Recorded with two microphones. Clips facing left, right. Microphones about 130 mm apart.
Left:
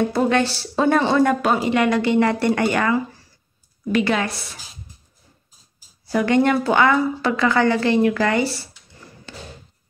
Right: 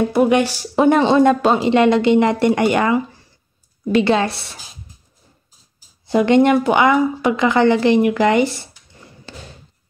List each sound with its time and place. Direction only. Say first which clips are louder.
0.0 s a woman's voice: right 4 dB; 15° right (ahead or behind); by 4.6 s 30° right (ahead or behind)
6.0 s a woman's voice: right 4 dB; 20° right (ahead or behind)
9.3 s thump: right 1 dB; 30° right (ahead or behind)